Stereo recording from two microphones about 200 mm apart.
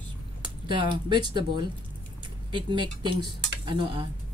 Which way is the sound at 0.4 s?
25° right (ahead or behind).